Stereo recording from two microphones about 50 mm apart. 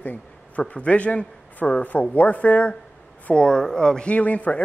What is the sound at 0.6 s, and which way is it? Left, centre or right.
A man's voice, left.